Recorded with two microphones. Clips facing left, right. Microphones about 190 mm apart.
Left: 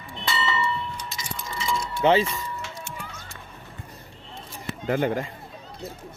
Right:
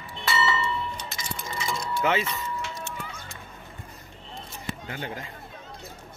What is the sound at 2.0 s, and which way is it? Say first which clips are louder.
Speech: left 7 dB; 25° left (ahead or behind).